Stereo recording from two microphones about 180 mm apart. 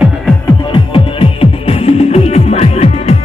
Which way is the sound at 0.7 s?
30° left (ahead or behind).